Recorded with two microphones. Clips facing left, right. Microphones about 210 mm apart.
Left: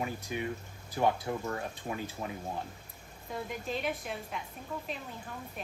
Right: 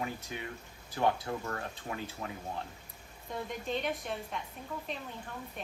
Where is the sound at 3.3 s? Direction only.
5° left (ahead or behind).